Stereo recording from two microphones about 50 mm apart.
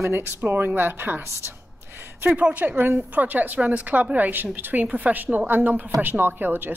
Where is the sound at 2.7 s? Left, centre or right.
Right.